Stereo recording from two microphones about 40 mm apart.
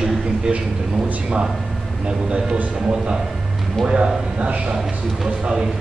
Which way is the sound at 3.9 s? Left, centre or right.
Right.